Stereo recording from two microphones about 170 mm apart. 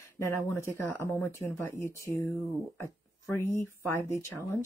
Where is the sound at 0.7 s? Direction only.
15° left (ahead or behind).